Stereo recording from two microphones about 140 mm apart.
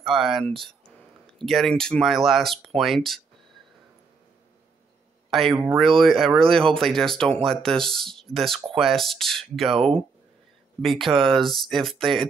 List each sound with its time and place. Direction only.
0.0 s speech: centre (ahead or behind)
5.3 s speech: centre (ahead or behind)
11.1 s speech: 35° right (ahead or behind)
11.4 s speech: centre (ahead or behind)